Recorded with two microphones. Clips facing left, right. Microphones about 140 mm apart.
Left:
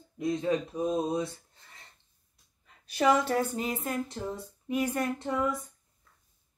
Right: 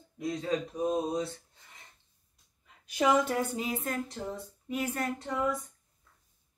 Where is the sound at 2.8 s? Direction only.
15° right (ahead or behind).